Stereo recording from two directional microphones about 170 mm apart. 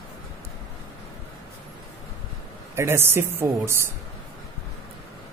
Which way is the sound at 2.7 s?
15° right (ahead or behind).